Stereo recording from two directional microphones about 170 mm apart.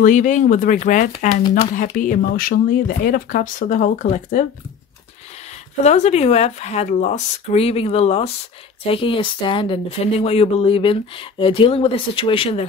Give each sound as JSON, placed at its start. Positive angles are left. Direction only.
{"t": 0.0, "sound": "speech", "side_deg": 50}
{"t": 5.9, "sound": "speech", "side_deg": 40}